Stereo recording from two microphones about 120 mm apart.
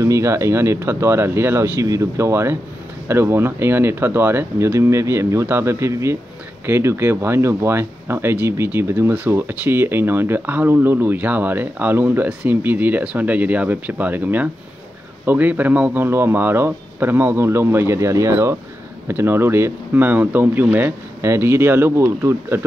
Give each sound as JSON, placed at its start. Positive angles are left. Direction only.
{"t": 0.0, "sound": "speech", "side_deg": -25}